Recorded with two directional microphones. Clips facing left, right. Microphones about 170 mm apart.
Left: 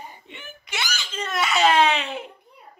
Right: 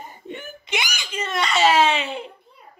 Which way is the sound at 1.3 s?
Centre (ahead or behind).